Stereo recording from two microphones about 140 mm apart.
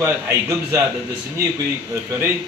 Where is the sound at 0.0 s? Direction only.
20° right (ahead or behind).